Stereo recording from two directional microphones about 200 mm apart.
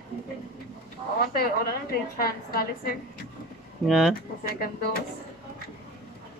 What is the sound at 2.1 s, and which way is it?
Speech, 50° left (ahead or behind).